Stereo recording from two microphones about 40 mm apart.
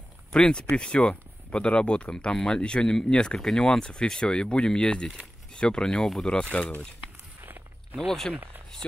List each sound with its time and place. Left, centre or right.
0.3 s speech: left
3.3 s speech: centre
3.8 s speech: left
7.0 s walk: right
8.1 s speech: centre